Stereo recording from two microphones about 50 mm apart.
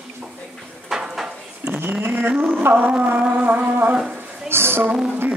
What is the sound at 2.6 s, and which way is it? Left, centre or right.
Speech, right.